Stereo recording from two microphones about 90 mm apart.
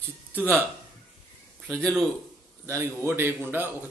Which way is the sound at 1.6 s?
15° left (ahead or behind).